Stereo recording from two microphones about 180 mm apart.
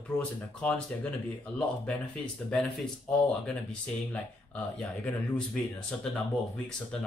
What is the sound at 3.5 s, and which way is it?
A man's voice, 5° left (ahead or behind).